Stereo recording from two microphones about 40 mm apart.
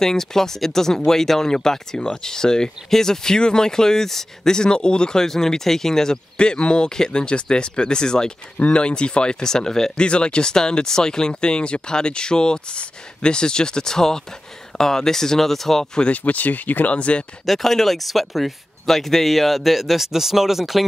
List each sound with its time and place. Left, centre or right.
0.0 s speech: centre
4.6 s speech: left
6.3 s speech: left
9.9 s speech: left
16.1 s speech: left
16.9 s speech: left
17.5 s speech: centre